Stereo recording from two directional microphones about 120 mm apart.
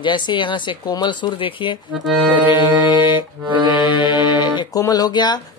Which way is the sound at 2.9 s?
40° left (ahead or behind).